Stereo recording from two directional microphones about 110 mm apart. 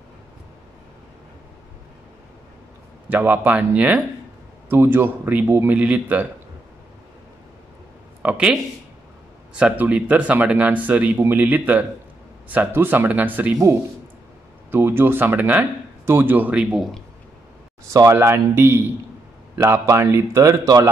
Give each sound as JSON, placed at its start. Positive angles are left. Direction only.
{"t": 3.1, "sound": "speech", "side_deg": -15}
{"t": 8.2, "sound": "speech", "side_deg": -10}
{"t": 14.7, "sound": "a man's voice", "side_deg": -20}
{"t": 17.8, "sound": "a man's voice", "side_deg": -30}